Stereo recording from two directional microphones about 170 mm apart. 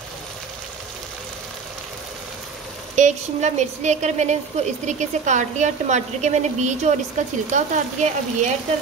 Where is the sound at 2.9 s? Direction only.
45° right (ahead or behind).